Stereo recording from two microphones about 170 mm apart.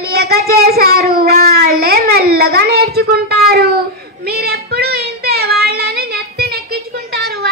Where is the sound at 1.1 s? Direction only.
65° right (ahead or behind).